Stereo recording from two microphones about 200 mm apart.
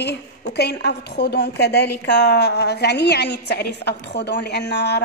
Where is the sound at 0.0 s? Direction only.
55° left (ahead or behind).